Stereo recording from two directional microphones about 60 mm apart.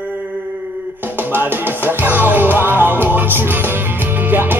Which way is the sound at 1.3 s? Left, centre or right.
Right.